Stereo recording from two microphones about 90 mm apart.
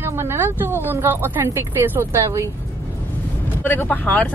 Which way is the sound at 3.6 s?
20° left (ahead or behind).